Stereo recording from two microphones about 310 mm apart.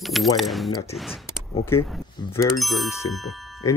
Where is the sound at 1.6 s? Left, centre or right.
Centre.